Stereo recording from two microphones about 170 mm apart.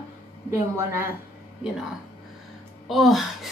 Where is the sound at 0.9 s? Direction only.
15° right (ahead or behind).